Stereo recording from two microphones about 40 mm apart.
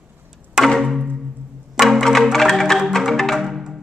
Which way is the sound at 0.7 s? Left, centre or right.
Centre.